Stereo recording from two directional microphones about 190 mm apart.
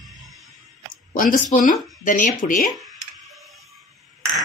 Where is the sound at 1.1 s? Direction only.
45° left (ahead or behind).